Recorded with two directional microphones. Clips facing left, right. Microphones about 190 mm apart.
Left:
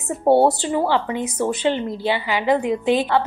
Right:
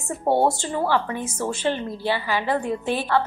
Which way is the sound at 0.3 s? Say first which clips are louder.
Left 6 dB; 35° left (ahead or behind).